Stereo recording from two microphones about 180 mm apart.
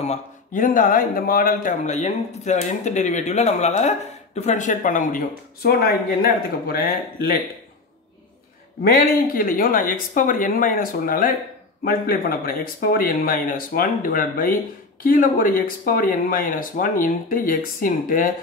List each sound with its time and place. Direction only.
0.0 s speech: 40° left (ahead or behind)
5.6 s speech: 60° left (ahead or behind)
8.8 s speech: 55° left (ahead or behind)